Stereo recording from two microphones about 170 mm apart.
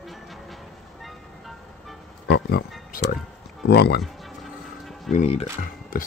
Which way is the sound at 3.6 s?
75° left (ahead or behind).